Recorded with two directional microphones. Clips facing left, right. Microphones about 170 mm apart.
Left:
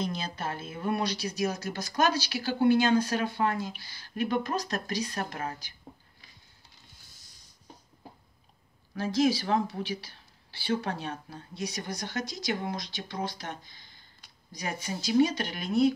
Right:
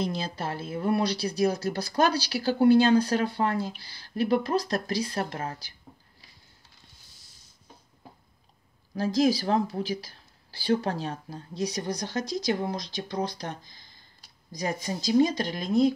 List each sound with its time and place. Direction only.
0.0 s speech: 30° right (ahead or behind)
8.9 s speech: 35° right (ahead or behind)